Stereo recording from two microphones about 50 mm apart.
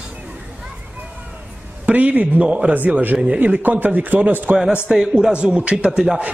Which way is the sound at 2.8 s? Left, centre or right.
Right.